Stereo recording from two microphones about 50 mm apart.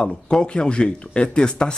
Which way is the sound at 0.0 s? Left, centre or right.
Centre.